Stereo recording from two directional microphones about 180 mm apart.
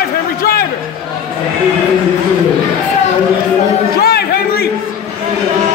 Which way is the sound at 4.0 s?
60° left (ahead or behind).